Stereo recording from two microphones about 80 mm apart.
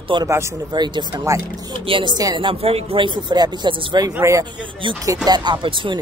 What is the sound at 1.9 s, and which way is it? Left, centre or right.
Speech, right.